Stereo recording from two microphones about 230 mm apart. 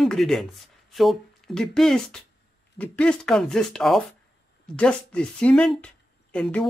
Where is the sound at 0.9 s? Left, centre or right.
Centre.